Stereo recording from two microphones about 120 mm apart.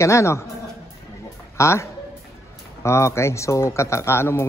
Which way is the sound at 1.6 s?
25° left (ahead or behind).